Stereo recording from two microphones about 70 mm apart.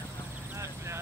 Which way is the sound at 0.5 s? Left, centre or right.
Right.